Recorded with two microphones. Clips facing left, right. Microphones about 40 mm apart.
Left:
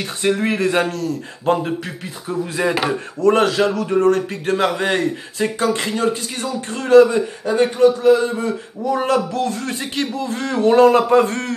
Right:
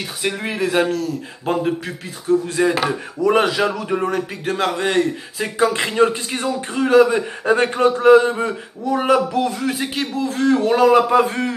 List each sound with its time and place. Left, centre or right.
0.2 s speech: centre
3.2 s speech: centre
4.5 s speech: centre
5.6 s speech: right
6.7 s speech: centre
7.4 s a man's voice: right
8.9 s speech: centre